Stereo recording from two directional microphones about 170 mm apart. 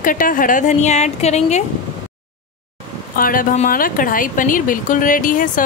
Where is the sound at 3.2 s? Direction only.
55° left (ahead or behind).